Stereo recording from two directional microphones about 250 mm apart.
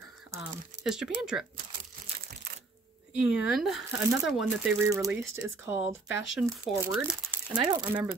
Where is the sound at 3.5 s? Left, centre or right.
Centre.